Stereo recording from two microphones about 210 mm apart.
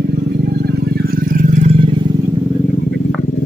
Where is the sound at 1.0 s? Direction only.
40° right (ahead or behind).